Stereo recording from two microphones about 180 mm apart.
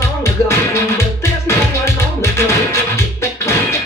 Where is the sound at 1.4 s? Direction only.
15° left (ahead or behind).